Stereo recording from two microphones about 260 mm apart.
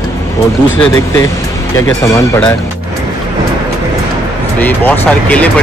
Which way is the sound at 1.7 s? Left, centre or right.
Centre.